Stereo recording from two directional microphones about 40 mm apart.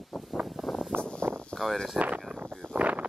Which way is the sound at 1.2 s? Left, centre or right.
Right.